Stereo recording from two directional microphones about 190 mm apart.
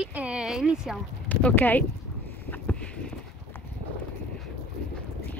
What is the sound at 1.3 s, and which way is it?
Speech, 10° left (ahead or behind).